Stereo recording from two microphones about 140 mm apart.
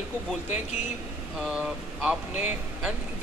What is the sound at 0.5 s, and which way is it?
Speech, 50° left (ahead or behind).